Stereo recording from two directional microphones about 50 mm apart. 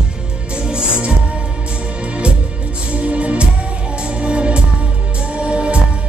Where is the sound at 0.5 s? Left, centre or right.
Centre.